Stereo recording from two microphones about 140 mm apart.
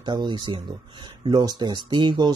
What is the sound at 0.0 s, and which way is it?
A man's voice, 35° right (ahead or behind).